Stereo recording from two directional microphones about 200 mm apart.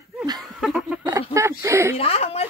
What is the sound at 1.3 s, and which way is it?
Speech, 15° right (ahead or behind).